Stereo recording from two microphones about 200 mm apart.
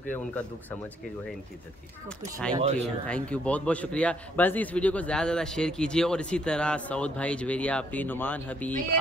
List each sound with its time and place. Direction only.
0.1 s a man's voice: 5° left (ahead or behind)
2.5 s speech: 30° right (ahead or behind)
2.8 s a man's voice: 5° left (ahead or behind)